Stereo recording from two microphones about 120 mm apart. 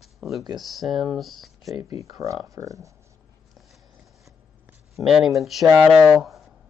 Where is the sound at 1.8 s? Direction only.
25° right (ahead or behind).